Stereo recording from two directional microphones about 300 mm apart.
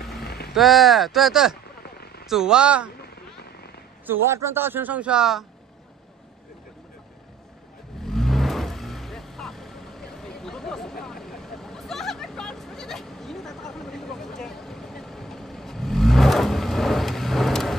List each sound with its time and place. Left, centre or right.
0.2 s vehicle: left
0.5 s speech: centre
1.8 s a sound: left
2.2 s speech: centre
4.0 s a man's voice: centre
8.0 s vehicle: centre
10.2 s a sound: centre